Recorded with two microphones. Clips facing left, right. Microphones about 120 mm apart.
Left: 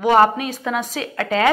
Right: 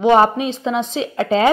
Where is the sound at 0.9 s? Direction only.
25° right (ahead or behind).